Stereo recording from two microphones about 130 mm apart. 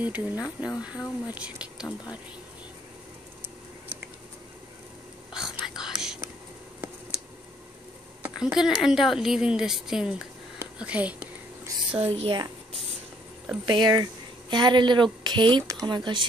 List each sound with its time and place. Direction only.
0.0 s speech: 10° right (ahead or behind)
5.3 s whispering: 5° right (ahead or behind)
6.8 s a sound: 15° right (ahead or behind)
8.2 s speech: 5° right (ahead or behind)
12.1 s speech: 40° right (ahead or behind)
13.7 s a woman's voice: 35° right (ahead or behind)